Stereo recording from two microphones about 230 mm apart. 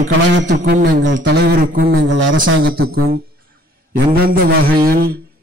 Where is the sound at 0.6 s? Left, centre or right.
Right.